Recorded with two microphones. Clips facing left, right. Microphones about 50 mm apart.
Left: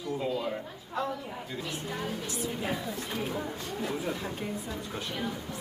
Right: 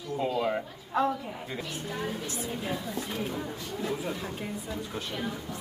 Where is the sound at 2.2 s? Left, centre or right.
Right.